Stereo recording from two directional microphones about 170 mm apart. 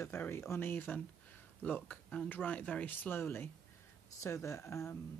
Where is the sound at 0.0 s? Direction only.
15° left (ahead or behind).